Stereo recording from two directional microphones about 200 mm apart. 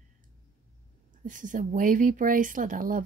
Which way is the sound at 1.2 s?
40° right (ahead or behind).